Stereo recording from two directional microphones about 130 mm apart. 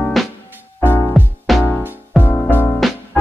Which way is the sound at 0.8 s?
15° left (ahead or behind).